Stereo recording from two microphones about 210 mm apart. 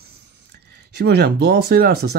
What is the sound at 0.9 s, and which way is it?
Speech, 50° right (ahead or behind).